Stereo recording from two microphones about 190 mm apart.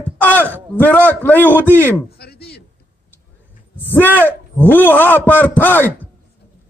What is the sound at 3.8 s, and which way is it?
A man's voice, 10° left (ahead or behind).